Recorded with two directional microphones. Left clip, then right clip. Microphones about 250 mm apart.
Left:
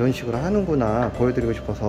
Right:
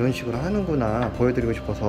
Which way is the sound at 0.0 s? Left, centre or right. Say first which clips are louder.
Left 2 dB; centre.